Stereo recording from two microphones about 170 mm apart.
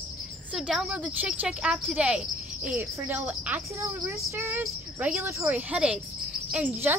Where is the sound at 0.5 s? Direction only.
5° right (ahead or behind).